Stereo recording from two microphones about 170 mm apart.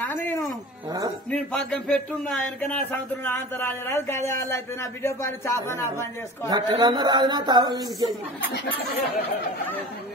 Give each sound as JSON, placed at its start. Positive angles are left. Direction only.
{"t": 0.0, "sound": "a sound", "side_deg": 10}
{"t": 1.3, "sound": "a man's voice", "side_deg": 5}
{"t": 6.4, "sound": "a woman's voice", "side_deg": -25}